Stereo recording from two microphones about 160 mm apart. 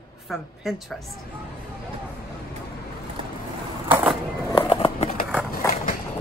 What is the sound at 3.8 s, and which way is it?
Skateboard, 10° right (ahead or behind).